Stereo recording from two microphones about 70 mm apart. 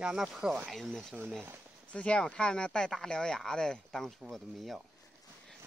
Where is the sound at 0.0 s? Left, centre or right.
Centre.